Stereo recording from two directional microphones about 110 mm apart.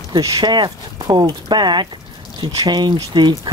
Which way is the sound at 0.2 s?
40° right (ahead or behind).